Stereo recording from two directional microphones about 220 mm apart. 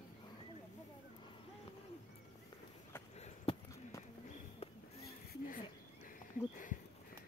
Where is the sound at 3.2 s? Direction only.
25° left (ahead or behind).